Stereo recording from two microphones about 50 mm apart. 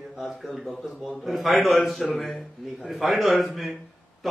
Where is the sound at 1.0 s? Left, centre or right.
Centre.